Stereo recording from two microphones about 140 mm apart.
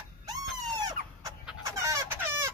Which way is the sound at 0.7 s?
25° right (ahead or behind).